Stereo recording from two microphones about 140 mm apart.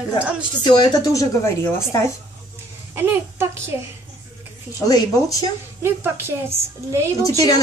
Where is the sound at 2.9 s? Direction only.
20° right (ahead or behind).